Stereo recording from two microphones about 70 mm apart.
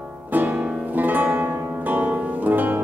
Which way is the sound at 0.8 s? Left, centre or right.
Right.